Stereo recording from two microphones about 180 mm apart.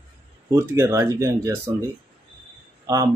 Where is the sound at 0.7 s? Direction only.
15° right (ahead or behind).